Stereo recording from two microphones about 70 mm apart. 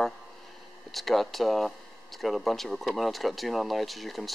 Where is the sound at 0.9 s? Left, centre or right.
Centre.